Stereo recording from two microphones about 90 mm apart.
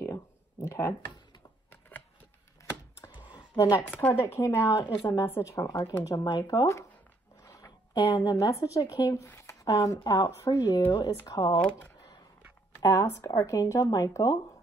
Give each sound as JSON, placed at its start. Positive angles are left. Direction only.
{"t": 0.0, "sound": "a sound", "side_deg": 30}
{"t": 3.3, "sound": "a sound", "side_deg": 45}
{"t": 4.2, "sound": "speech", "side_deg": 30}
{"t": 4.7, "sound": "a woman's voice", "side_deg": 60}
{"t": 5.0, "sound": "speech", "side_deg": 35}
{"t": 7.4, "sound": "a sound", "side_deg": 35}
{"t": 8.1, "sound": "speech", "side_deg": 40}
{"t": 11.5, "sound": "speech", "side_deg": 15}
{"t": 12.8, "sound": "speech", "side_deg": 40}